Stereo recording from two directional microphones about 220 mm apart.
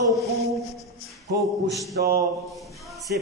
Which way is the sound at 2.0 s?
45° right (ahead or behind).